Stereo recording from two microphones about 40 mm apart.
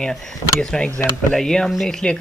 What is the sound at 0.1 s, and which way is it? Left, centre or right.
Speech, centre.